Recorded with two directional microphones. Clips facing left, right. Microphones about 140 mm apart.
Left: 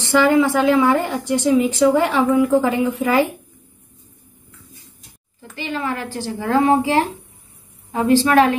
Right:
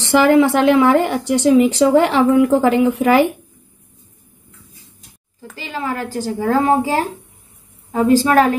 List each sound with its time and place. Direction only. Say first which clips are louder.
0.0 s speech: right 3 dB; 90° right
5.6 s a woman's voice: even; 35° right (ahead or behind)